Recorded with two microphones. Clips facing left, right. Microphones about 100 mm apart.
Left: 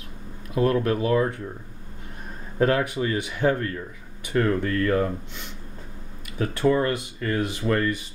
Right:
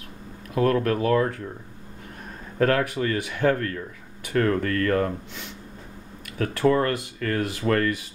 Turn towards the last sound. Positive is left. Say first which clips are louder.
# right 1 dB
turn(degrees=5)  # may be behind; listen again after turning